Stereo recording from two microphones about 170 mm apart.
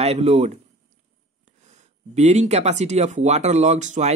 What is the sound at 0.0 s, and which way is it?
Speech, 40° right (ahead or behind).